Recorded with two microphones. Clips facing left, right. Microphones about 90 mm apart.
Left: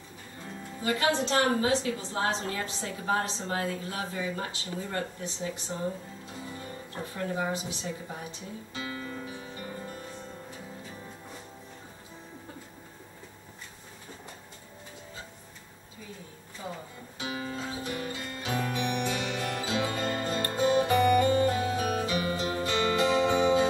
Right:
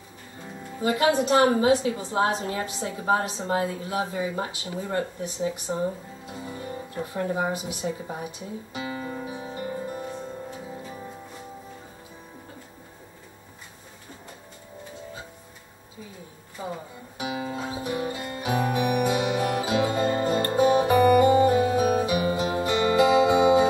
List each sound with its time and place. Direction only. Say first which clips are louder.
0.8 s a woman's voice: right 6 dB; 20° right (ahead or behind)
7.2 s speech: right 4 dB; 25° right (ahead or behind)
8.1 s guitar: right 6 dB; 20° right (ahead or behind)
17.2 s music: right 5 dB; 20° right (ahead or behind)